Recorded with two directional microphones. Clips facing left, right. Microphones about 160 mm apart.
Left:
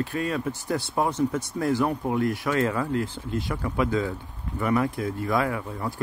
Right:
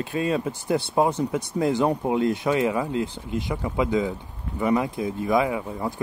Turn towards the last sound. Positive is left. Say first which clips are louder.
# right 2 dB
turn(degrees=-20)  # may be behind; listen again after turning